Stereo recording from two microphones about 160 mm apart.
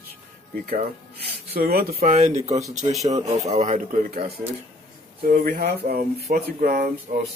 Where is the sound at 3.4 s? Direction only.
50° right (ahead or behind).